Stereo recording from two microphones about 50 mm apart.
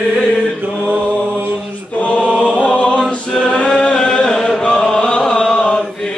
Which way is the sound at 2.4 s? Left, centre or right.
Left.